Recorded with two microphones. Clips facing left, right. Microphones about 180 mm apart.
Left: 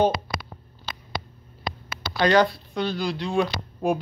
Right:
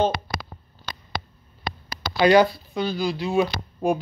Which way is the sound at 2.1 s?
10° right (ahead or behind).